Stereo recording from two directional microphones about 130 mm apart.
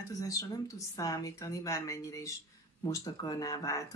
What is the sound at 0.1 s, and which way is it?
Speech, 25° left (ahead or behind).